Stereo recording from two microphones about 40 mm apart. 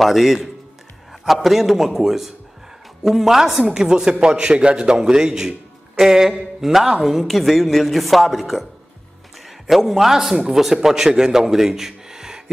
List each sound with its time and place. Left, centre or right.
0.0 s a woman's voice: centre
9.7 s a man's voice: centre